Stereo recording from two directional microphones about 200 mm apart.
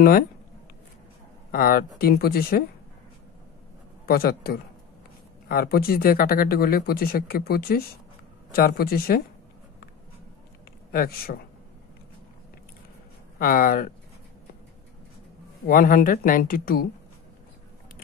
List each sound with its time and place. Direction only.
1.5 s speech: 45° left (ahead or behind)
4.0 s a man's voice: 50° left (ahead or behind)
10.9 s speech: 45° left (ahead or behind)
13.4 s speech: 45° left (ahead or behind)
15.6 s speech: 45° left (ahead or behind)